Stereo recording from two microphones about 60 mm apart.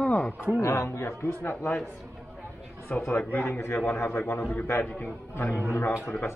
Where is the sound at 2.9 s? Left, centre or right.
Centre.